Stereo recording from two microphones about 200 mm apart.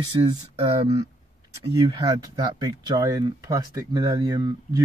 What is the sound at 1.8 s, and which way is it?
Speech, 20° right (ahead or behind).